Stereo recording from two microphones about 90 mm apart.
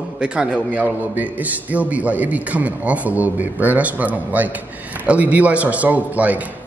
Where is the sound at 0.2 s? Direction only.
10° right (ahead or behind).